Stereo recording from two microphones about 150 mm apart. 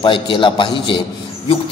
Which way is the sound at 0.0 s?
35° left (ahead or behind).